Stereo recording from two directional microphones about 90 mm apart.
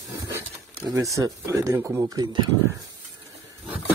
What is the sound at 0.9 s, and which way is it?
Speech, 35° right (ahead or behind).